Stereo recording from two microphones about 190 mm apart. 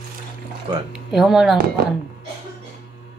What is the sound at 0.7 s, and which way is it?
Speech, 25° right (ahead or behind).